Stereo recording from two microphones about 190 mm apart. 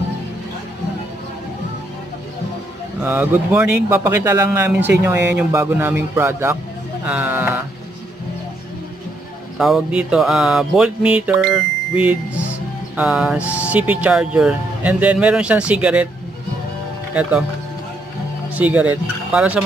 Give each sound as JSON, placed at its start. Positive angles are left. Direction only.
{"t": 3.0, "sound": "speech", "side_deg": -10}
{"t": 9.6, "sound": "music", "side_deg": 0}
{"t": 11.4, "sound": "wind chime", "side_deg": -5}
{"t": 12.9, "sound": "speech", "side_deg": -5}
{"t": 17.1, "sound": "speech", "side_deg": -5}
{"t": 18.6, "sound": "speech", "side_deg": -10}